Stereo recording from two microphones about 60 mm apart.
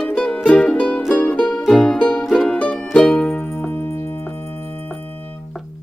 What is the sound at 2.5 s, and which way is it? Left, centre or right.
Music, centre.